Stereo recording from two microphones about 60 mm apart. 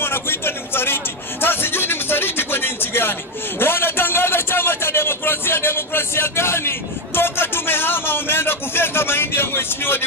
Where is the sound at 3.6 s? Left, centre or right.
Left.